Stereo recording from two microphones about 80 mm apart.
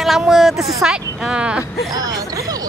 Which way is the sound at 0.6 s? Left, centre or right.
Right.